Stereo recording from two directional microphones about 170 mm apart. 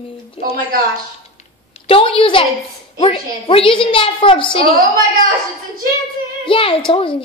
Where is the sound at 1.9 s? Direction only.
30° left (ahead or behind).